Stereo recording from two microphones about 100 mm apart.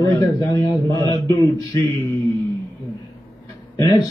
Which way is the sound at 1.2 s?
25° left (ahead or behind).